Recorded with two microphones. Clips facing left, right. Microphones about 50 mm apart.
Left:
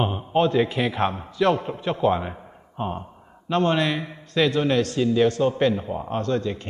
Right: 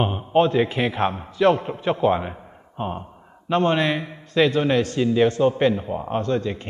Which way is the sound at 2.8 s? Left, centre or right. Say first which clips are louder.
Even; centre.